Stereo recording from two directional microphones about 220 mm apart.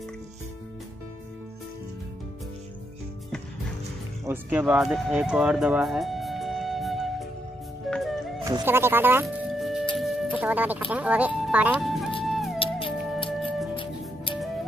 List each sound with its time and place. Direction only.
4.3 s speech: 10° right (ahead or behind)
7.9 s music: centre (ahead or behind)
8.5 s speech: 15° right (ahead or behind)
9.9 s music: centre (ahead or behind)
10.4 s speech: 5° right (ahead or behind)
12.3 s music: centre (ahead or behind)
12.5 s music: 25° left (ahead or behind)
13.3 s music: centre (ahead or behind)
13.7 s music: 25° left (ahead or behind)